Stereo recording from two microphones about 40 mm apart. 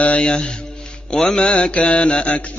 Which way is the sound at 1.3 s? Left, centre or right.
Left.